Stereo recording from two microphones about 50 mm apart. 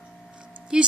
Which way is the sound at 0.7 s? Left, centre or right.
Centre.